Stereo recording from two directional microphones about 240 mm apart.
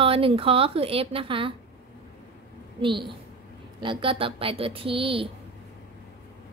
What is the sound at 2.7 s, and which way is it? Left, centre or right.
A woman's voice, right.